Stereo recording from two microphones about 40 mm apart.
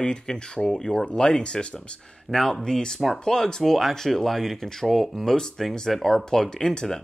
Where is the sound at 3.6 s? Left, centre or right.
Centre.